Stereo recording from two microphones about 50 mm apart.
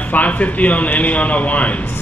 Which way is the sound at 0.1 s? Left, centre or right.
Left.